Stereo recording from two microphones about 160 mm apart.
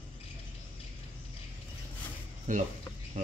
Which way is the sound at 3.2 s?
50° right (ahead or behind).